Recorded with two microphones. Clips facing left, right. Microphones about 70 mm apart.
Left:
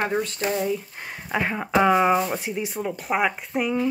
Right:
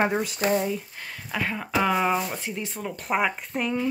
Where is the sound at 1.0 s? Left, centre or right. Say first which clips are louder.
Left 4 dB; left.